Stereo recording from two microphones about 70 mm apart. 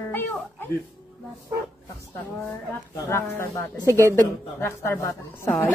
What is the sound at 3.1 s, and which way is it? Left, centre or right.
Speech, left.